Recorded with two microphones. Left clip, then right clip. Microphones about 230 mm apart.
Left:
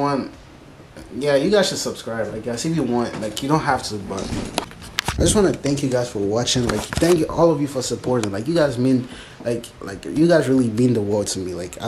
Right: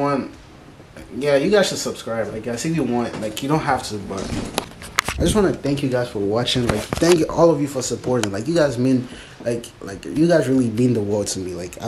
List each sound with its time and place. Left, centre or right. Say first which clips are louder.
1.2 s speech: right 1 dB; centre